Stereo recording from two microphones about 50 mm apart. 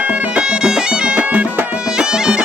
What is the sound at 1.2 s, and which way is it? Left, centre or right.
Music, right.